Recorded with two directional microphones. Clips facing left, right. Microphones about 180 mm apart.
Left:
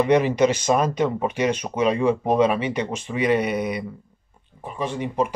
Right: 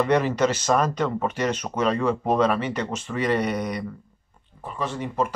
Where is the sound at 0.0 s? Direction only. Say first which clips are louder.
Left 3 dB; 15° left (ahead or behind).